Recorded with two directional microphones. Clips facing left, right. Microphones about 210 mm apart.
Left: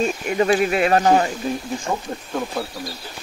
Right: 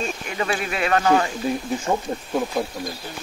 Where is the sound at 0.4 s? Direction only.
40° left (ahead or behind).